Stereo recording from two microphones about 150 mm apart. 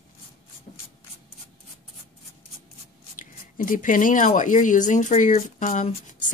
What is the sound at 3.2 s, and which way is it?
Speech, 65° left (ahead or behind).